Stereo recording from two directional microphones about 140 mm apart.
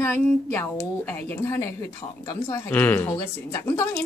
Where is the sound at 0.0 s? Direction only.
15° left (ahead or behind).